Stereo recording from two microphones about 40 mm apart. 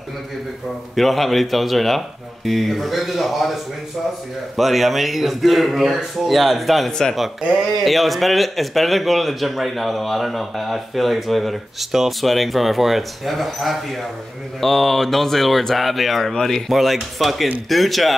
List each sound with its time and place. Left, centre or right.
0.9 s a man's voice: centre
4.6 s a man's voice: centre